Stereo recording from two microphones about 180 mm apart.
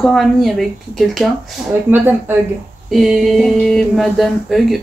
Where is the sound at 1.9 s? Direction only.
10° right (ahead or behind).